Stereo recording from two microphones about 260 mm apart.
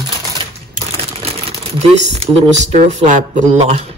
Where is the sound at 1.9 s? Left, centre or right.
Right.